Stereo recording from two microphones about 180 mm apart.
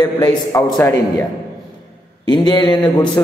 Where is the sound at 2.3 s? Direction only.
25° left (ahead or behind).